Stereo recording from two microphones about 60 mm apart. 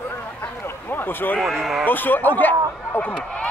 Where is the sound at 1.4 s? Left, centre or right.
Centre.